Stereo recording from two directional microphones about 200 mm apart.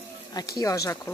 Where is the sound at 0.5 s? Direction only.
15° left (ahead or behind).